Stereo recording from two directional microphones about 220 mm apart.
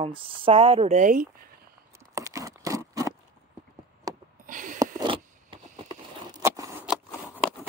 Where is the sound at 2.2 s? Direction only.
15° right (ahead or behind).